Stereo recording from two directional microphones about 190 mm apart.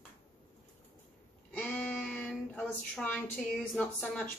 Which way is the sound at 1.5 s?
5° left (ahead or behind).